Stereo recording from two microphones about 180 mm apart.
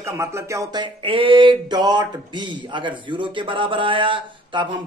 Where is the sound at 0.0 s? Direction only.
15° right (ahead or behind).